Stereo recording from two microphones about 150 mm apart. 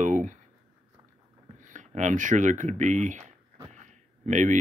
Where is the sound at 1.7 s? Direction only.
55° right (ahead or behind).